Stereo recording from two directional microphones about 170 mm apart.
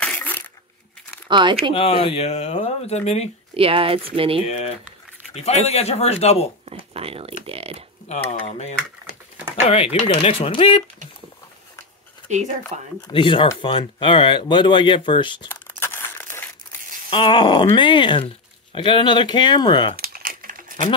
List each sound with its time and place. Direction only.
0.0 s a sound: 10° left (ahead or behind)
1.3 s speech: 30° right (ahead or behind)
1.7 s speech: 35° left (ahead or behind)
3.5 s speech: 35° right (ahead or behind)
4.5 s speech: 40° left (ahead or behind)
6.9 s speech: 35° right (ahead or behind)
8.3 s speech: 40° left (ahead or behind)
10.0 s speech: 35° left (ahead or behind)
12.3 s speech: 45° right (ahead or behind)
13.0 s speech: 30° left (ahead or behind)
15.8 s crumpling: 15° left (ahead or behind)
17.1 s speech: 30° left (ahead or behind)
20.0 s crumpling: 60° right (ahead or behind)